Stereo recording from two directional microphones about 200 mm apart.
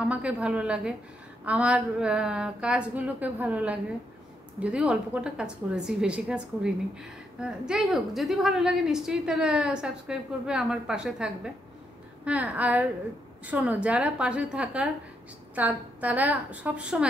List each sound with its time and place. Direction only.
0.0 s a woman's voice: 5° right (ahead or behind)